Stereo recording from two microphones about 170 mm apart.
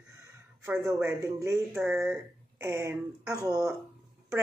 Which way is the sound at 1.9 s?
15° right (ahead or behind).